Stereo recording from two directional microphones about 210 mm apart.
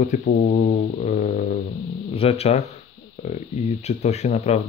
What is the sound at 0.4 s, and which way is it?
Speech, 35° left (ahead or behind).